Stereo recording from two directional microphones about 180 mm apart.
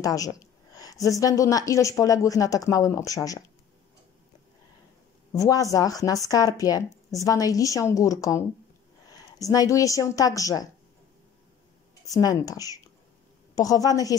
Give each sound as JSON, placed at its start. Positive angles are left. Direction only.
{"t": 0.0, "sound": "a woman's voice", "side_deg": 20}
{"t": 5.3, "sound": "a woman's voice", "side_deg": 20}
{"t": 12.1, "sound": "a woman's voice", "side_deg": 20}